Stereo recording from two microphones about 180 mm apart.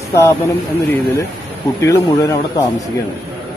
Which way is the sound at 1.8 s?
20° left (ahead or behind).